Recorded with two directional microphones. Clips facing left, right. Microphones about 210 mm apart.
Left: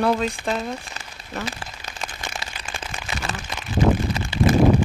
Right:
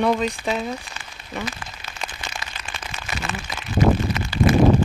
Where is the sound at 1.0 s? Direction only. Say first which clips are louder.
Left 1 dB; 40° left (ahead or behind).